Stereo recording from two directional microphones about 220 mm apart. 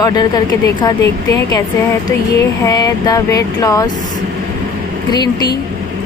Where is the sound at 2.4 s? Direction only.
15° left (ahead or behind).